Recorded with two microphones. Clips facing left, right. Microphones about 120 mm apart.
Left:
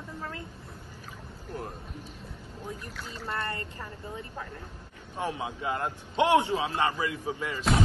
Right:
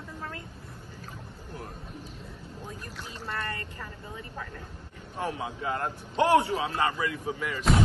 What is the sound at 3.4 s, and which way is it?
Speech, 30° left (ahead or behind).